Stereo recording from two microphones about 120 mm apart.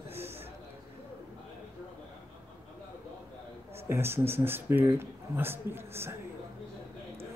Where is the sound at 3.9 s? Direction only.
20° right (ahead or behind).